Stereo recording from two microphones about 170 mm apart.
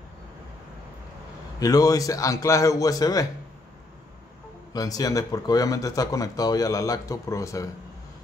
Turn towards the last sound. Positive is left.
turn(degrees=20)  # may be behind; listen again after turning